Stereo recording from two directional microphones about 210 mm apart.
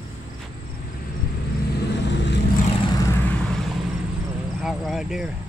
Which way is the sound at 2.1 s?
55° left (ahead or behind).